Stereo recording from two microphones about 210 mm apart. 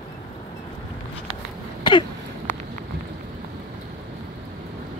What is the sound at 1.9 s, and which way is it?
Throat clearing, 25° left (ahead or behind).